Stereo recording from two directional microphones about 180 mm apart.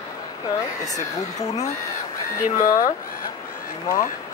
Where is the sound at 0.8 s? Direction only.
20° left (ahead or behind).